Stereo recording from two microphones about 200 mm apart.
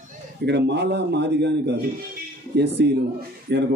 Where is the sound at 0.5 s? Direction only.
60° right (ahead or behind).